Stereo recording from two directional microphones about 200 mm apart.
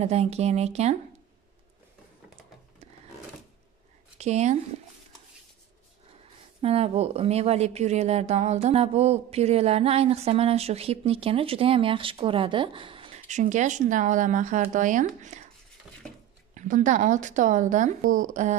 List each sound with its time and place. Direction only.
0.0 s a woman's voice: 30° right (ahead or behind)
4.2 s a woman's voice: 35° right (ahead or behind)
6.6 s a woman's voice: 30° right (ahead or behind)
16.5 s a woman's voice: 40° right (ahead or behind)